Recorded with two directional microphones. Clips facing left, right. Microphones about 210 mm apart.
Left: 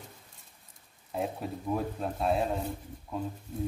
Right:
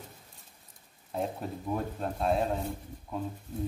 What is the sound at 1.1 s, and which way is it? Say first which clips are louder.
Speech: even; 5° left (ahead or behind).